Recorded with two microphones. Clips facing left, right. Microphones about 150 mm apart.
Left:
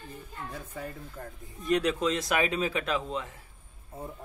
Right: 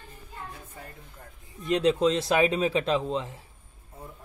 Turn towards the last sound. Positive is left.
turn(degrees=-25)  # may be behind; listen again after turning